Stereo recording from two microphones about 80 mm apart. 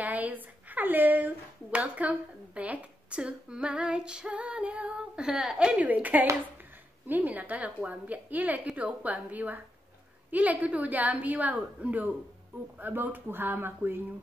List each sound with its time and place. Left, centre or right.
0.0 s a woman's voice: centre